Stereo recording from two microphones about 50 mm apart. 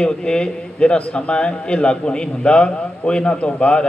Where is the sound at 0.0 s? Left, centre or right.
Centre.